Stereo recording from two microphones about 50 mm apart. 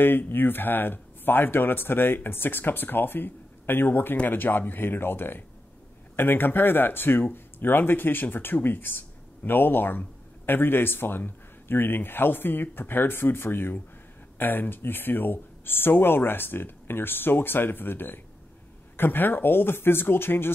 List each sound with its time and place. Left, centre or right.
0.0 s speech: left